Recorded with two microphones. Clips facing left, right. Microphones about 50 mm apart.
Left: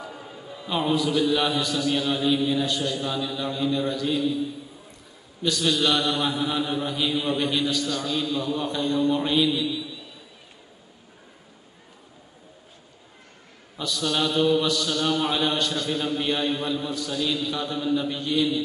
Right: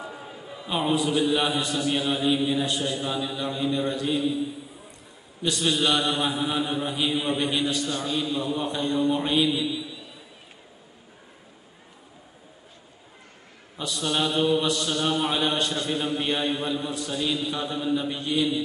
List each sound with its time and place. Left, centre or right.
0.1 s music: centre
0.9 s mantra: centre
13.7 s mantra: centre